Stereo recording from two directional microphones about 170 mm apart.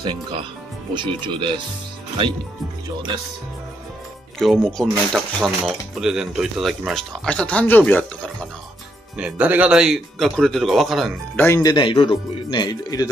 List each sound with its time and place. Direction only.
0.0 s speech: 30° right (ahead or behind)
4.4 s speech: centre (ahead or behind)
9.1 s speech: 5° right (ahead or behind)
11.3 s speech: 15° left (ahead or behind)
11.7 s speech: 25° left (ahead or behind)